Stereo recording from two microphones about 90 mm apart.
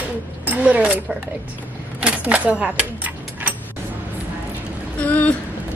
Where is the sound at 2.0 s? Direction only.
15° right (ahead or behind).